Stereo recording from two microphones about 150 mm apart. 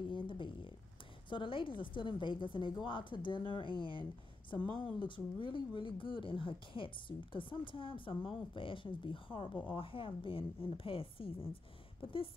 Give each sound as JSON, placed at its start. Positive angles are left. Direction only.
{"t": 0.1, "sound": "a sound", "side_deg": 35}
{"t": 1.3, "sound": "speech", "side_deg": 35}
{"t": 4.9, "sound": "speech", "side_deg": 35}